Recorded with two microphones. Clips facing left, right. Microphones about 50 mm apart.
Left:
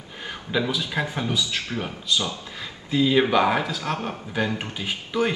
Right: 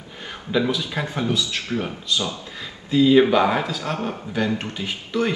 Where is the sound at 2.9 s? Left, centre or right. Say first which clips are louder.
Right 5 dB; centre.